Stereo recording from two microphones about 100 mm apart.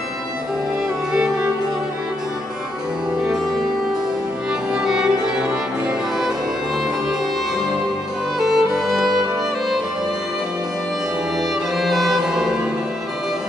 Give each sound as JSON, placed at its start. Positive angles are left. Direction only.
{"t": 1.1, "sound": "music", "side_deg": -10}
{"t": 4.7, "sound": "music", "side_deg": -5}
{"t": 8.4, "sound": "music", "side_deg": -5}
{"t": 11.7, "sound": "music", "side_deg": 0}